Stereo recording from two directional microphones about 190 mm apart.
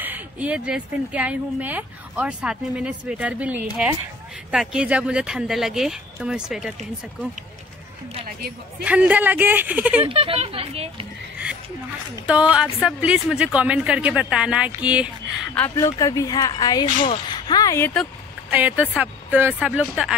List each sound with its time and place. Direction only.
0.0 s speech: 10° right (ahead or behind)
8.8 s speech: 5° right (ahead or behind)
10.0 s speech: 30° right (ahead or behind)
12.3 s speech: 5° right (ahead or behind)
15.6 s speech: 15° left (ahead or behind)
18.5 s speech: 10° right (ahead or behind)